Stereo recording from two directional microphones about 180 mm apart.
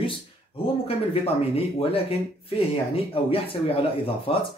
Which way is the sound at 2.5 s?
30° left (ahead or behind).